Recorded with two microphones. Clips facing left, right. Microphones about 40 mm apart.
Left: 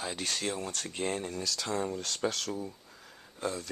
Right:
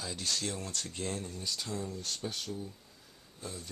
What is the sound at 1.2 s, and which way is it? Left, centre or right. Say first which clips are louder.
Speech: left 5 dB; left.